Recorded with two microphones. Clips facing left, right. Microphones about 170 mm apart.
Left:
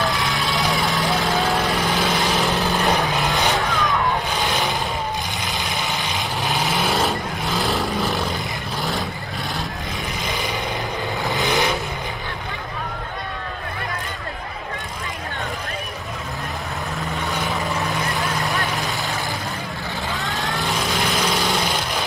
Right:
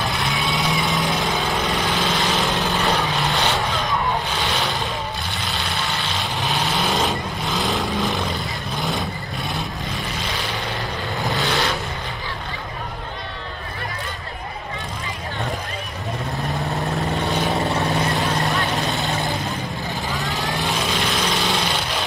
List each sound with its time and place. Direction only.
0.0 s vehicle: centre (ahead or behind)
4.3 s boat: 10° left (ahead or behind)
5.7 s vehicle: 15° left (ahead or behind)
6.4 s vehicle: centre (ahead or behind)
10.1 s vehicle: 10° left (ahead or behind)
17.0 s vehicle: 40° right (ahead or behind)
17.6 s vehicle: 20° right (ahead or behind)
18.1 s vehicle: centre (ahead or behind)
18.6 s vehicle: 20° right (ahead or behind)
20.6 s music: 5° left (ahead or behind)